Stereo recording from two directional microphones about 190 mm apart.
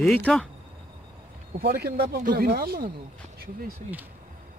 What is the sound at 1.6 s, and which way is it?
Speech, 55° right (ahead or behind).